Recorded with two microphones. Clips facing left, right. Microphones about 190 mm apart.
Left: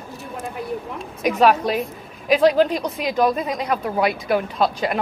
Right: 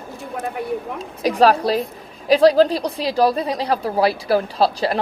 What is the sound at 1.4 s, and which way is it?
A woman's voice, 35° right (ahead or behind).